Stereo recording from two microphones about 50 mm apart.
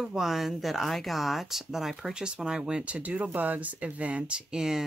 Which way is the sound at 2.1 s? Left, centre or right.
Centre.